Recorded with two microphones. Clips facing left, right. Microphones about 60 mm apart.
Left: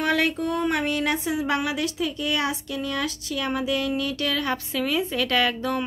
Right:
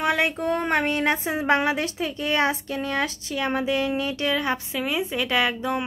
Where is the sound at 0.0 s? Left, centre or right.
Right.